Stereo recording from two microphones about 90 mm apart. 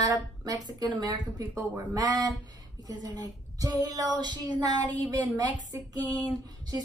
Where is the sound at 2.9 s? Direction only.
40° right (ahead or behind).